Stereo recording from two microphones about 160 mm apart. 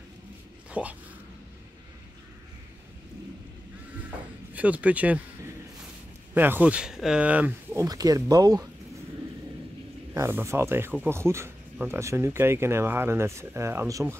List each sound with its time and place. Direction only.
0.7 s speech: 10° right (ahead or behind)
4.6 s speech: 10° right (ahead or behind)
6.3 s speech: 10° right (ahead or behind)
7.8 s speech: 20° right (ahead or behind)
10.1 s speech: 15° right (ahead or behind)